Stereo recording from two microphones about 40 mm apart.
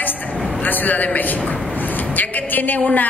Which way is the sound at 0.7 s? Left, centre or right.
Left.